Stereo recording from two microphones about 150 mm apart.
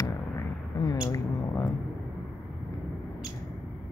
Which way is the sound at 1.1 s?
20° left (ahead or behind).